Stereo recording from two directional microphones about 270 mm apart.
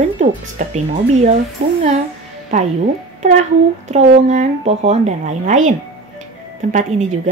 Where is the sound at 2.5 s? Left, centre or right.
Right.